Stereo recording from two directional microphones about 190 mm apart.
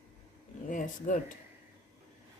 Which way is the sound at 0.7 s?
45° left (ahead or behind).